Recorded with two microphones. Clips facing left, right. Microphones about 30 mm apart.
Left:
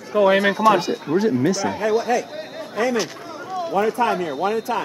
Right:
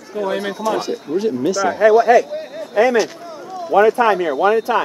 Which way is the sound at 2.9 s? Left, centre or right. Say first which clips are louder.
Right 6 dB; centre.